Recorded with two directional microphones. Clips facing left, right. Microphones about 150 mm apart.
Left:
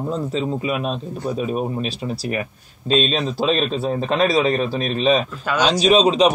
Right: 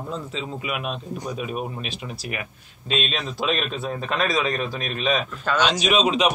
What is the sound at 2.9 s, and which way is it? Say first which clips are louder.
A man's voice: left 7 dB; 35° left (ahead or behind).